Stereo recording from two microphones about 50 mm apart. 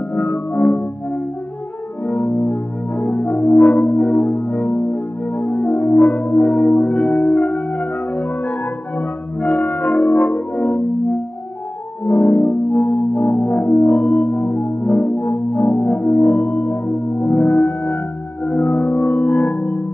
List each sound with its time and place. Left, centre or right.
0.1 s music: left
2.0 s french horn: left
9.4 s music: left
12.0 s music: left